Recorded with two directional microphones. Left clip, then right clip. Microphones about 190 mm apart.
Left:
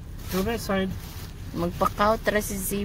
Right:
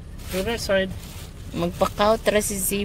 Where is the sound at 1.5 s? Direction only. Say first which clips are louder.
Right 2 dB; 10° right (ahead or behind).